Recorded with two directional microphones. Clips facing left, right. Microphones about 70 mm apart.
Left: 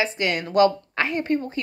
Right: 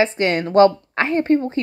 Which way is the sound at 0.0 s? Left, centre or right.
Right.